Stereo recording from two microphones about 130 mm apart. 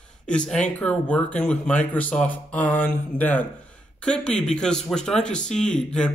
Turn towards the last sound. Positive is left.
turn(degrees=5)  # may be behind; listen again after turning